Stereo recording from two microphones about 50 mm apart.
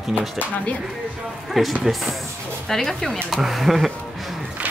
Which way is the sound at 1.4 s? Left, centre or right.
Centre.